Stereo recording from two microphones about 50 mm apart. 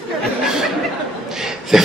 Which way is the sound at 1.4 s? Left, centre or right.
Centre.